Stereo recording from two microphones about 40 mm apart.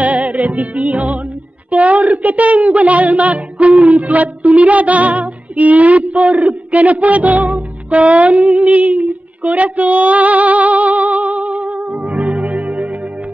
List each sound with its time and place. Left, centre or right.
0.0 s music: right
1.7 s speech: right